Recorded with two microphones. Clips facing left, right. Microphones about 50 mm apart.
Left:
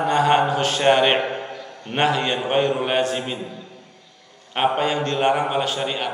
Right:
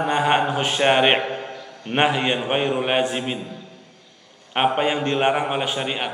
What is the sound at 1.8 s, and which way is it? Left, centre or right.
A man's voice, centre.